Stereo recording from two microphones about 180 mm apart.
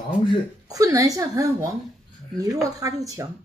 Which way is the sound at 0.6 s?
20° right (ahead or behind).